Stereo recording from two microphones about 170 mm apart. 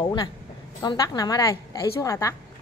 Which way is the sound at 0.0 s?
20° left (ahead or behind).